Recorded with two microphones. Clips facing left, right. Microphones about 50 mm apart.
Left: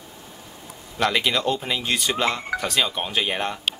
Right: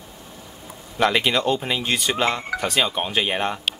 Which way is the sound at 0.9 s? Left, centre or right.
Centre.